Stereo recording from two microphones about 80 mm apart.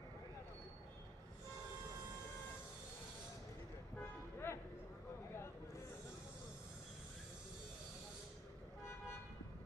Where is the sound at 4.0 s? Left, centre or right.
Left.